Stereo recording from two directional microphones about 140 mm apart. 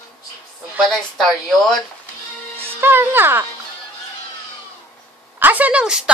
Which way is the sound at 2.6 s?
15° right (ahead or behind).